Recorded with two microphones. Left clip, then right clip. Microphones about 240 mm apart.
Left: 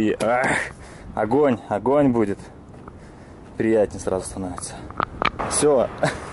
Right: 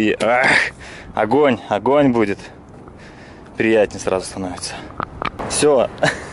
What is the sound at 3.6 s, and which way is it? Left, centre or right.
Speech, centre.